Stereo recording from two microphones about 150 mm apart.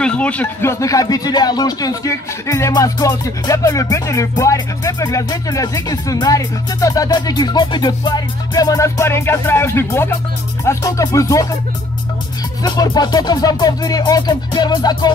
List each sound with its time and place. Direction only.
0.0 s speech: 10° left (ahead or behind)
12.6 s speech: 25° left (ahead or behind)